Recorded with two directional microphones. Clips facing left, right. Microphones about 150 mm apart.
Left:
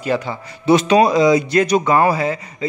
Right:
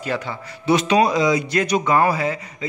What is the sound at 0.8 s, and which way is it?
Speech, 35° left (ahead or behind).